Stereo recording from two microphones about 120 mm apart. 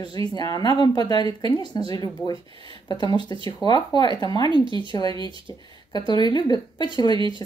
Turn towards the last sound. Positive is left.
turn(degrees=35)  # may be behind; listen again after turning